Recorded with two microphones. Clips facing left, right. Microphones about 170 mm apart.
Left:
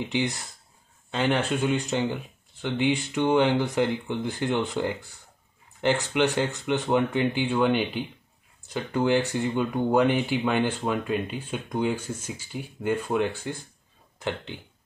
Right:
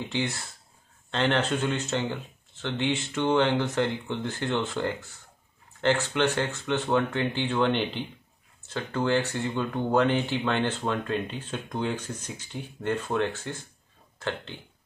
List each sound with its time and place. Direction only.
0.1 s speech: 15° left (ahead or behind)